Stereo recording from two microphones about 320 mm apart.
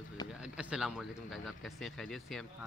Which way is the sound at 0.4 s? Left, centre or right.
Centre.